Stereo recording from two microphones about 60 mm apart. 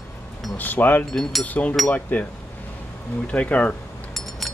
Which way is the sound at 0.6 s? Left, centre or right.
Left.